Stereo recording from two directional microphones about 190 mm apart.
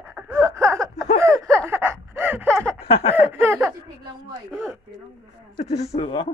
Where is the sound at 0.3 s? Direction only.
15° right (ahead or behind).